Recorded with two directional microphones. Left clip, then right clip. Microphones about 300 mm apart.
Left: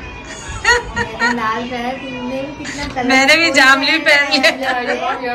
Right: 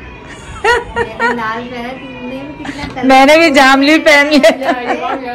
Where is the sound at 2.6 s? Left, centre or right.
Centre.